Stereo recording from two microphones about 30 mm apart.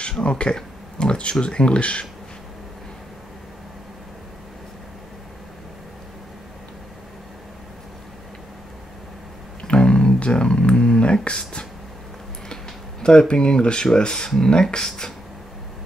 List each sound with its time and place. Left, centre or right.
0.2 s speech: left
9.6 s a sound: left
11.2 s speech: left
13.0 s speech: left